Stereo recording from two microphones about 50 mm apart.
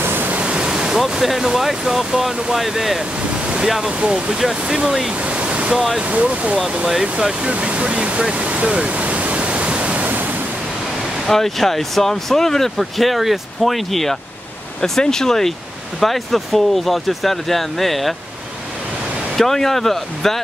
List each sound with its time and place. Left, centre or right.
0.0 s pink noise: right
0.3 s speech: right; by 5.1 s centre
5.3 s waterfall: right
5.8 s speech: centre
6.0 s speech: right
6.9 s speech: centre
7.4 s waterfall: right
11.2 s speech: centre
19.3 s speech: centre